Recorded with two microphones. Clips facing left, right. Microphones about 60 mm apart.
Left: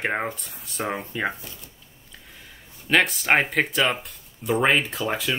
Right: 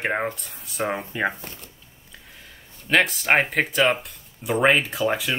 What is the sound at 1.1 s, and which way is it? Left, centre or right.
Speech, centre.